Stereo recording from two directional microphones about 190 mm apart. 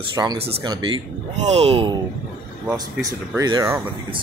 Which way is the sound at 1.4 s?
35° right (ahead or behind).